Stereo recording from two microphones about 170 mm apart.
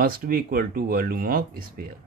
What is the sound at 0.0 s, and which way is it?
Speech, 60° right (ahead or behind).